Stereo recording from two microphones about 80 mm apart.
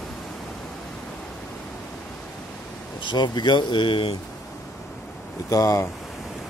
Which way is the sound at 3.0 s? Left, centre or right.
Left.